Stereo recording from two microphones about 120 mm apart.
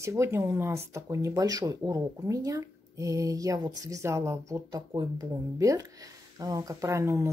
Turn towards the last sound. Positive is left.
turn(degrees=-25)  # may be behind; listen again after turning